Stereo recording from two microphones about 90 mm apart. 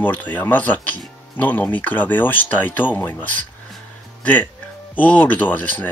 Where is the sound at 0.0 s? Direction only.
20° left (ahead or behind).